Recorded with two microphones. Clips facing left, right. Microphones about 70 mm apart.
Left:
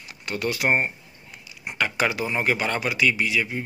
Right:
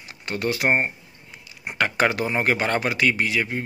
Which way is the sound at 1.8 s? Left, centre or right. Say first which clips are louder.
Right 3 dB; right.